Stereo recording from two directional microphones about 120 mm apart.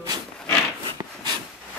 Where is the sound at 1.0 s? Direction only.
25° right (ahead or behind).